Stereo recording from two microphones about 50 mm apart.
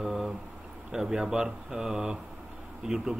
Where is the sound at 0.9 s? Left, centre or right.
Centre.